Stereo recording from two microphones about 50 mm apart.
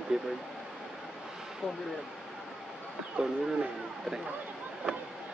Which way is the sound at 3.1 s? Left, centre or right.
Centre.